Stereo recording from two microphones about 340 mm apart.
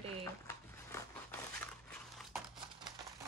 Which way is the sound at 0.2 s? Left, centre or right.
Centre.